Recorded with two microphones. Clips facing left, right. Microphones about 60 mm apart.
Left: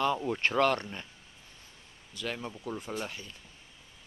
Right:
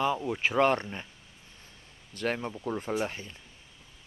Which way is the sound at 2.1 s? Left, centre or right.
Right.